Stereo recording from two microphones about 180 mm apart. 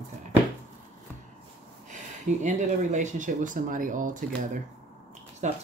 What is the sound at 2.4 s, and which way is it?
Speech, 45° right (ahead or behind).